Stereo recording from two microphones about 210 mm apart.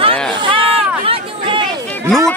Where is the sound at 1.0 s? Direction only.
25° right (ahead or behind).